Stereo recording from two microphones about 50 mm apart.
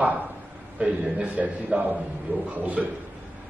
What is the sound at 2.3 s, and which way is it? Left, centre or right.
Speech, left.